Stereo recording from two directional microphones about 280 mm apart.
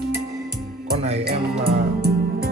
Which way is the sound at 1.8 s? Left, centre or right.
Right.